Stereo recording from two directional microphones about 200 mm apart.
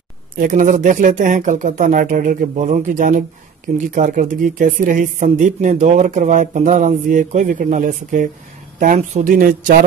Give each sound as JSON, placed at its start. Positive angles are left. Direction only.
{"t": 0.4, "sound": "speech", "side_deg": -40}